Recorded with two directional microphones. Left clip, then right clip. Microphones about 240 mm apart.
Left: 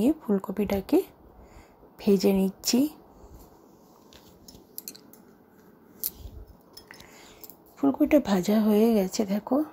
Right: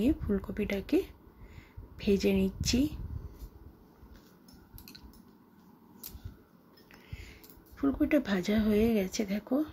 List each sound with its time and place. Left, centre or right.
0.0 s speech: centre
4.7 s a sound: left
7.7 s speech: centre